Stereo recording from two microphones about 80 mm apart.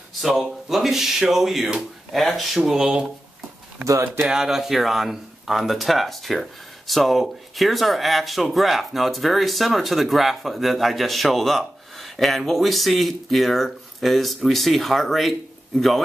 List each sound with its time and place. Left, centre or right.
0.2 s speech: centre
3.8 s speech: right
4.3 s speech: centre